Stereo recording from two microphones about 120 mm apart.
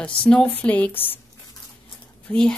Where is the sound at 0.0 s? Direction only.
10° left (ahead or behind).